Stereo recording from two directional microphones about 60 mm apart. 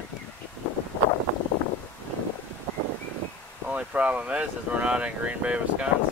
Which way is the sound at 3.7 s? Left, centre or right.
Right.